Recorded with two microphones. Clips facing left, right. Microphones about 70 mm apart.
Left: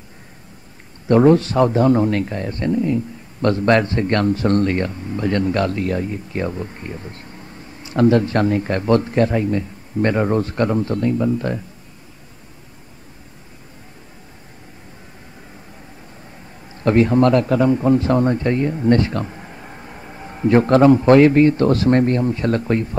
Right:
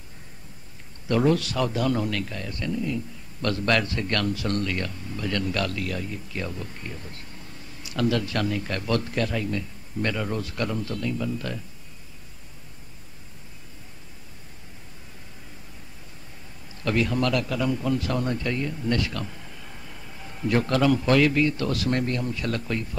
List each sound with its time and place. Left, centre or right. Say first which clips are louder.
1.0 s a man's voice: left 9 dB; left
16.7 s a man's voice: left 10 dB; left